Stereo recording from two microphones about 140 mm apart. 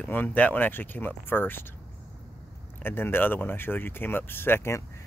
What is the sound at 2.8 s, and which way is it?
Speech, 15° left (ahead or behind).